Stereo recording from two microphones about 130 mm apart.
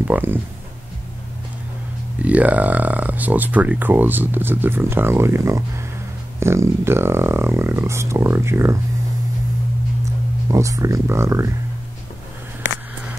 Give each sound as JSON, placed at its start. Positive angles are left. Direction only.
{"t": 0.1, "sound": "speech", "side_deg": -15}
{"t": 2.2, "sound": "speech", "side_deg": -10}
{"t": 10.5, "sound": "speech", "side_deg": -25}